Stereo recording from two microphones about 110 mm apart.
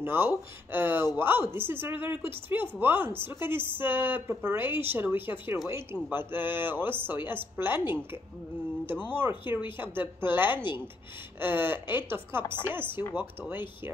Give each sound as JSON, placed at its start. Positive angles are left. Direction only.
{"t": 0.0, "sound": "speech", "side_deg": -20}